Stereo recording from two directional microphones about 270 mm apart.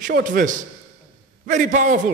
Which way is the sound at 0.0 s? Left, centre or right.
Right.